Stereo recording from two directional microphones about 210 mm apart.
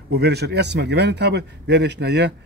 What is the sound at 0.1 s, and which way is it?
A man's voice, 50° right (ahead or behind).